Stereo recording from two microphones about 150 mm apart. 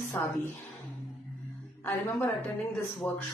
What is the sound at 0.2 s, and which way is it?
Speech, 15° left (ahead or behind).